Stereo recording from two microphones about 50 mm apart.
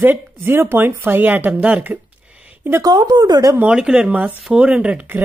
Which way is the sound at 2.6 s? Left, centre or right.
Right.